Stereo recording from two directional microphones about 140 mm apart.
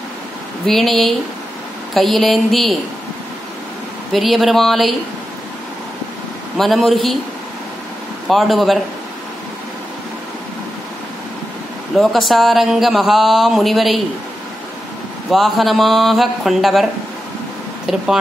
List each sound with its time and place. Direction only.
0.7 s speech: centre (ahead or behind)
4.1 s speech: centre (ahead or behind)
6.5 s speech: centre (ahead or behind)
8.3 s speech: centre (ahead or behind)
12.0 s speech: centre (ahead or behind)
15.3 s speech: centre (ahead or behind)